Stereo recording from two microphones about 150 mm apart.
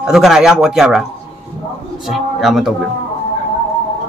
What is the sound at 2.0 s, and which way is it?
Speech, centre (ahead or behind).